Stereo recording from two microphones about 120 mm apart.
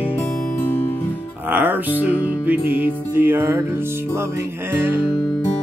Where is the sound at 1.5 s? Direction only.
15° right (ahead or behind).